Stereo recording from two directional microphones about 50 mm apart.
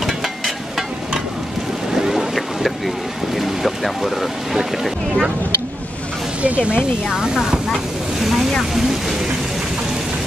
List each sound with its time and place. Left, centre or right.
2.0 s boat: centre
3.3 s speech: centre
6.4 s speech: right
7.1 s speech: centre